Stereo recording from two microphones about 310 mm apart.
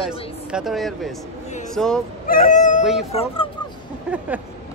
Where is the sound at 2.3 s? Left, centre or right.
Left.